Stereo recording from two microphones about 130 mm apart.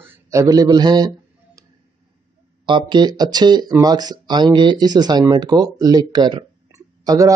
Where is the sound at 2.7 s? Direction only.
35° right (ahead or behind).